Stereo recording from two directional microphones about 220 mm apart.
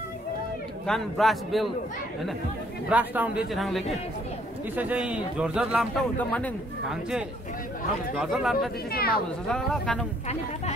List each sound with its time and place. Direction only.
0.8 s a man's voice: centre (ahead or behind)
2.9 s a man's voice: 5° right (ahead or behind)
8.9 s speech: 45° left (ahead or behind)
9.5 s a man's voice: 5° left (ahead or behind)